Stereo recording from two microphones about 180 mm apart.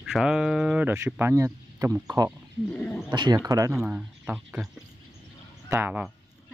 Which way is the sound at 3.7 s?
5° right (ahead or behind).